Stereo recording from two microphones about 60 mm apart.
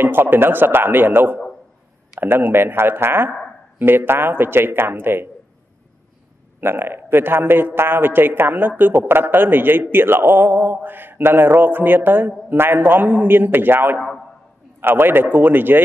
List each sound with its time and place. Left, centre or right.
0.0 s a man's voice: right
6.6 s a man's voice: right